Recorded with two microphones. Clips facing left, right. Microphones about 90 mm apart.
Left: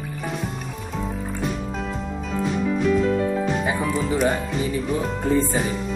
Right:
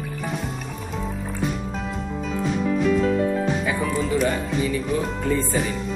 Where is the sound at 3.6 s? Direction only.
40° left (ahead or behind).